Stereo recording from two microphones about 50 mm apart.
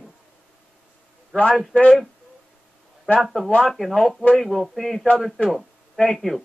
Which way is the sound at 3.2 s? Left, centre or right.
Centre.